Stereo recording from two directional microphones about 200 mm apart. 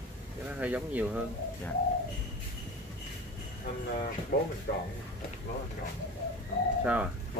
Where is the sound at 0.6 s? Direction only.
5° right (ahead or behind).